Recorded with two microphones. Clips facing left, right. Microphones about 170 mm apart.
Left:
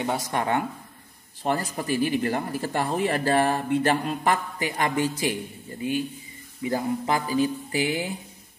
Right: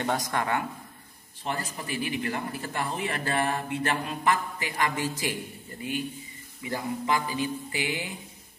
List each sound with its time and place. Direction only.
0.3 s speech: 25° left (ahead or behind)
1.4 s speech: 40° left (ahead or behind)